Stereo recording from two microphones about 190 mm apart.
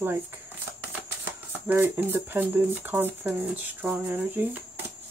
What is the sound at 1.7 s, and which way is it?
Speech, 10° right (ahead or behind).